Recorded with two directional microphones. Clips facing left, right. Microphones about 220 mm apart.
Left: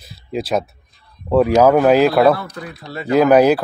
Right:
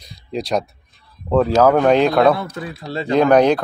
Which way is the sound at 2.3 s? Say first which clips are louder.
Even; 25° right (ahead or behind).